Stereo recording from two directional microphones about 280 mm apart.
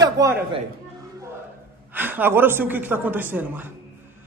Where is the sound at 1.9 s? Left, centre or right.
Centre.